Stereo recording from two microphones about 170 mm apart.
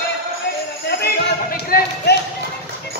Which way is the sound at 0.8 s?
65° left (ahead or behind).